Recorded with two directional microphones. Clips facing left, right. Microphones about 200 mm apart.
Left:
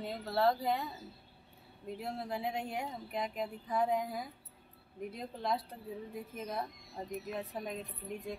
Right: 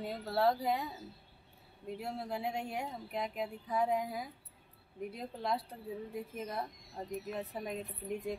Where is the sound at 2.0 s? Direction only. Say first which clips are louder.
Left 1 dB; 5° right (ahead or behind).